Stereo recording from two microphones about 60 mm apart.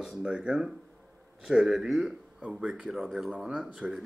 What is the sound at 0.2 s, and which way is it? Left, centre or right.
Speech, right.